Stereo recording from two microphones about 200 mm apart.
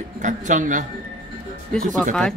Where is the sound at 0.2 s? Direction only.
40° right (ahead or behind).